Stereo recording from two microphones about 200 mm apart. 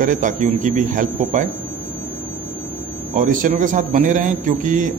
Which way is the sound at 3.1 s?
40° right (ahead or behind).